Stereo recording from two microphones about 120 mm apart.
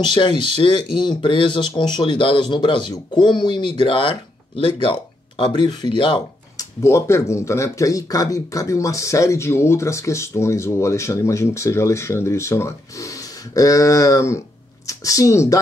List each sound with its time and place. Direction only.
0.0 s speech: 40° left (ahead or behind)
6.5 s speech: 25° left (ahead or behind)